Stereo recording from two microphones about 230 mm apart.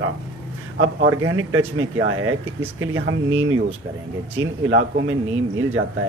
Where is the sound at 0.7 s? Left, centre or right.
Right.